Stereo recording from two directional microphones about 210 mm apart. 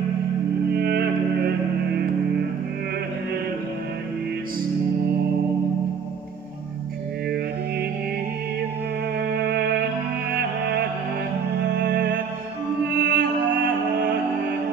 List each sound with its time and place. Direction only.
0.7 s music: 50° right (ahead or behind)
9.2 s music: 50° right (ahead or behind)